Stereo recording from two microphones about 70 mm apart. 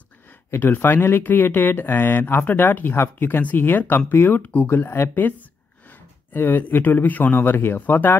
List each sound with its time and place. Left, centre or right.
0.6 s speech: left